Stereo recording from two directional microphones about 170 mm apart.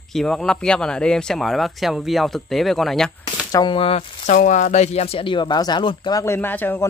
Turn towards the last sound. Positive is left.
turn(degrees=10)  # may be behind; listen again after turning